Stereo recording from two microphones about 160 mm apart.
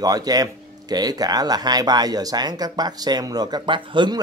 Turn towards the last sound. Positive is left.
turn(degrees=-30)  # may be behind; listen again after turning